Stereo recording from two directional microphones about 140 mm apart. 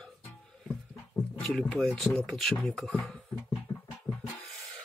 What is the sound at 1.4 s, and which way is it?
Speech, 5° left (ahead or behind).